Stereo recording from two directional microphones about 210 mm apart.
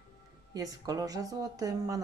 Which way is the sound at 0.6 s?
15° right (ahead or behind).